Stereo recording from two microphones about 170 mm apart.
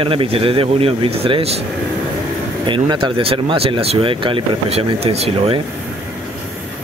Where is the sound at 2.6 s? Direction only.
25° right (ahead or behind).